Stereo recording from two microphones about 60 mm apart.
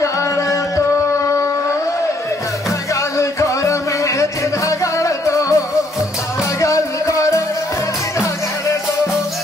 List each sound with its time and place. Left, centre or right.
0.0 s music: left
3.2 s music: left
6.6 s music: left